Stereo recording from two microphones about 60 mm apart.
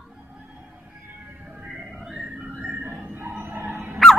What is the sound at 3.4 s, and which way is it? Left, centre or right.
Dog, right.